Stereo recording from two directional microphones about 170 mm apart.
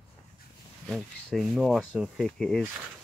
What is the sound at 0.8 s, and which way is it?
Speech, centre (ahead or behind).